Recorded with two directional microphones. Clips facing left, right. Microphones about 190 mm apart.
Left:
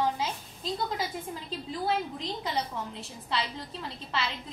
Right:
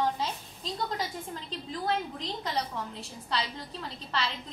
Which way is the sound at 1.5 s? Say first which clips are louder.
Left 1 dB; 5° left (ahead or behind).